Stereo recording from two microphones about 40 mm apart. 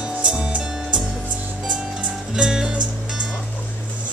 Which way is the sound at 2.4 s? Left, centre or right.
Centre.